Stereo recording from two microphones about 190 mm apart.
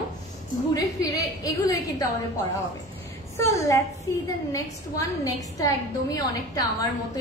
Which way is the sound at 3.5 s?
15° left (ahead or behind).